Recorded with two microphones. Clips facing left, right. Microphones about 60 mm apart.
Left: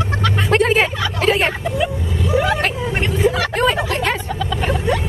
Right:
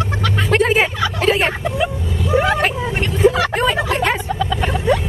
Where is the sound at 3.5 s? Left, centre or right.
Centre.